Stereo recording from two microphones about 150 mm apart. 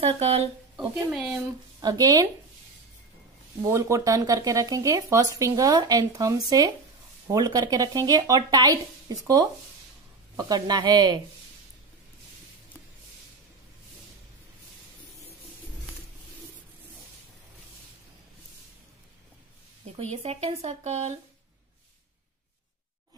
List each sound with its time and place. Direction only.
0.0 s speech: 40° right (ahead or behind)
0.7 s speech: 5° right (ahead or behind)
1.8 s speech: 25° right (ahead or behind)
3.7 s speech: 20° right (ahead or behind)
20.0 s speech: 45° right (ahead or behind)